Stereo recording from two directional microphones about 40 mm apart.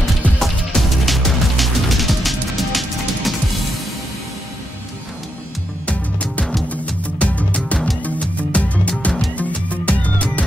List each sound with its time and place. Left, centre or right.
0.4 s music: centre
6.7 s music: left